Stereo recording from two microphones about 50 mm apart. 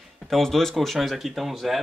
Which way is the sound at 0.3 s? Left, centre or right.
Centre.